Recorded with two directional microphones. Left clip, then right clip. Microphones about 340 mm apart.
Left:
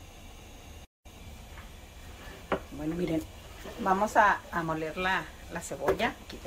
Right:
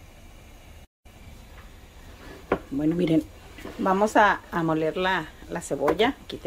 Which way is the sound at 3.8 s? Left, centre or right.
Right.